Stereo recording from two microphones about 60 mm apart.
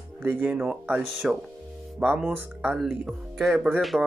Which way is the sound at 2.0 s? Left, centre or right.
Centre.